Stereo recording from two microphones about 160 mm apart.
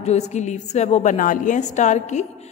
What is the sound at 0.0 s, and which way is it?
A woman's voice, 45° left (ahead or behind).